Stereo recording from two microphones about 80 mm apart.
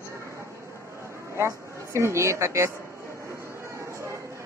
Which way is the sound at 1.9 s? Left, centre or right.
Right.